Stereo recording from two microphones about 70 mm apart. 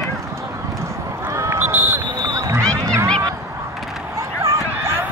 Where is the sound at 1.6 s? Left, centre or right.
Right.